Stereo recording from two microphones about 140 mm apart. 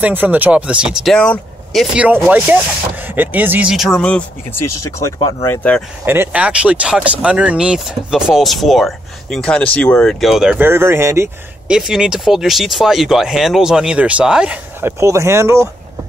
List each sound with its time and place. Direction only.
0.0 s speech: 10° right (ahead or behind)
1.1 s speech: 5° left (ahead or behind)
2.0 s speech: 10° right (ahead or behind); by 5.9 s 10° left (ahead or behind)
6.0 s speech: 15° right (ahead or behind)
10.6 s speech: 15° right (ahead or behind)
11.6 s speech: 5° right (ahead or behind)